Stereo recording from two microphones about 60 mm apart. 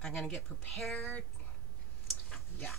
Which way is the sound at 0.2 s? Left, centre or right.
Left.